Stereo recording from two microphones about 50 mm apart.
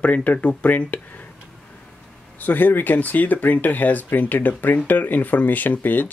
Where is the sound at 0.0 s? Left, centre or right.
Left.